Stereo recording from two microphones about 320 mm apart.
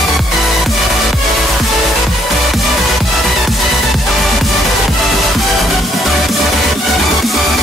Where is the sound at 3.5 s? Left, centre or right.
Centre.